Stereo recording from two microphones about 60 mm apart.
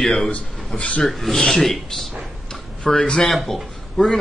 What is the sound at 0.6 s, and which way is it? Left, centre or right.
Speech, left.